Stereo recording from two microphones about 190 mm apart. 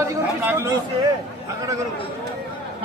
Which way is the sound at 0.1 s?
10° right (ahead or behind).